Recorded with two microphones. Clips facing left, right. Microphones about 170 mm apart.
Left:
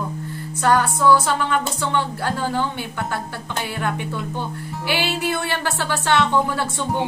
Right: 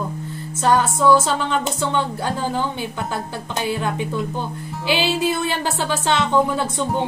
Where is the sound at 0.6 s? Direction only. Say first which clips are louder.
Right 1 dB; 20° right (ahead or behind).